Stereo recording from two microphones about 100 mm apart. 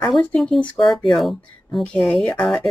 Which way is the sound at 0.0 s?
5° left (ahead or behind).